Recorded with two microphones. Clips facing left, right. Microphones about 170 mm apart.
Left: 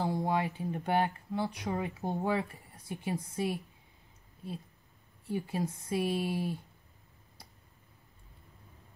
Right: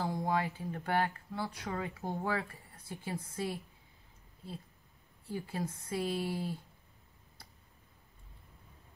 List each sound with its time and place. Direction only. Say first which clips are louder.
0.0 s speech: left 2 dB; 15° left (ahead or behind)
5.2 s speech: left 4 dB; 15° left (ahead or behind)